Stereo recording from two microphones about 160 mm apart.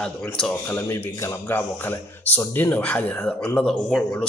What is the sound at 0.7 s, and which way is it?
Speech, 15° left (ahead or behind).